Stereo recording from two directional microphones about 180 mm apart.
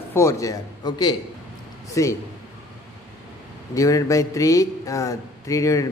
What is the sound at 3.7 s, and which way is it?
Speech, 20° left (ahead or behind).